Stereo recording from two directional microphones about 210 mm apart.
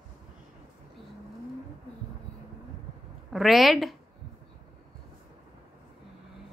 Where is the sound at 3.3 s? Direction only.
Centre (ahead or behind).